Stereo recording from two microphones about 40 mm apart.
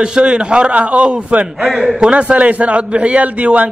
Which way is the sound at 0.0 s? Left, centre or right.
Right.